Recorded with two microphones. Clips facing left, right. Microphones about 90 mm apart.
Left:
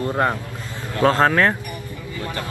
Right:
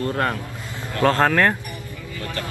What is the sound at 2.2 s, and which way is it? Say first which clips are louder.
Vehicle: left 1 dB; 20° left (ahead or behind).